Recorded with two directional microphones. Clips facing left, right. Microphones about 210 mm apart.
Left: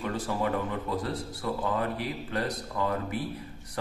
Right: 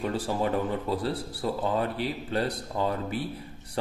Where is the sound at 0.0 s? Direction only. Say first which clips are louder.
Right 2 dB; 30° right (ahead or behind).